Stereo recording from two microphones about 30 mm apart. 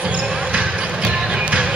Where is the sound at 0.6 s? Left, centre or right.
Right.